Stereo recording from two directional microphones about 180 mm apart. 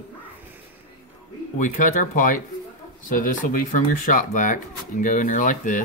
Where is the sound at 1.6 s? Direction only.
45° left (ahead or behind).